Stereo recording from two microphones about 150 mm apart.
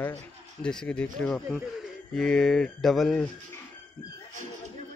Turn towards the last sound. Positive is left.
turn(degrees=0)  # may be behind; listen again after turning